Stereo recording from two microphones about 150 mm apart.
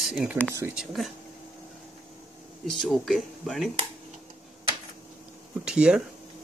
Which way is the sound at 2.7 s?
Centre (ahead or behind).